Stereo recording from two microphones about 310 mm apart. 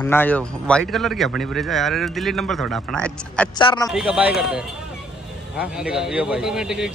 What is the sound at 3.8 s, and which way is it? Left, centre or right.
A man's voice, centre.